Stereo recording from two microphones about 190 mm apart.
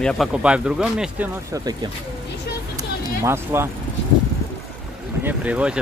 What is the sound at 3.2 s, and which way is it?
Speech, 15° right (ahead or behind).